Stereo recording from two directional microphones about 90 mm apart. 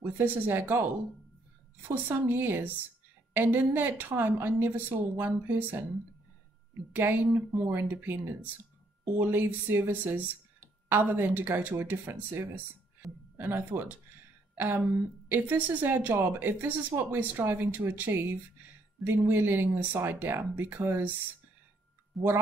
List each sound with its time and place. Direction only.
0.0 s speech: 25° right (ahead or behind)
1.9 s speech: 25° right (ahead or behind)
6.9 s speech: 20° right (ahead or behind)
13.0 s a sound: centre (ahead or behind)
13.4 s speech: 20° right (ahead or behind)
15.2 s speech: 20° right (ahead or behind)
22.2 s speech: centre (ahead or behind)